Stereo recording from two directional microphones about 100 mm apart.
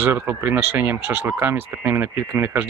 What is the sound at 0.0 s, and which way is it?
Speech, 20° right (ahead or behind).